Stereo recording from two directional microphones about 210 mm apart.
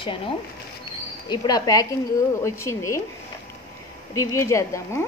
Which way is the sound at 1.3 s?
20° left (ahead or behind).